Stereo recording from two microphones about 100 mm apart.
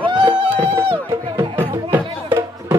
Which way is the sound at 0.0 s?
50° right (ahead or behind).